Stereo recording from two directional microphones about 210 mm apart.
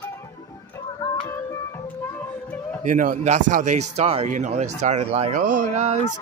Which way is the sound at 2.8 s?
40° right (ahead or behind).